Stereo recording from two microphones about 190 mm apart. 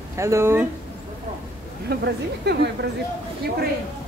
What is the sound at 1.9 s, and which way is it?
Speech, 60° right (ahead or behind).